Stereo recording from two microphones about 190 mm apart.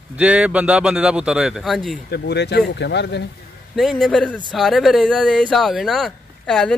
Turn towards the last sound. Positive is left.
turn(degrees=5)  # may be behind; listen again after turning